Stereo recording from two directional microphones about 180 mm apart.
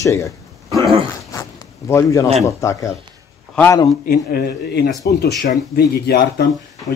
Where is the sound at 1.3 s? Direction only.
15° left (ahead or behind).